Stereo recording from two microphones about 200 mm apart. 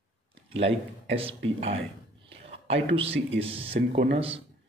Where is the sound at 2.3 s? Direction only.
30° right (ahead or behind).